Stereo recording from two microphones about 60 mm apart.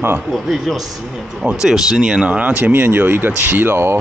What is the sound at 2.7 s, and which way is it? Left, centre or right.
Speech, right.